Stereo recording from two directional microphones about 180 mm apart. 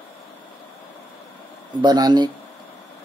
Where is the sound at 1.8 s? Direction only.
25° right (ahead or behind).